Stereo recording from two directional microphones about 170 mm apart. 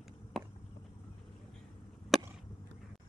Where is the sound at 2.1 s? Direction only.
Centre (ahead or behind).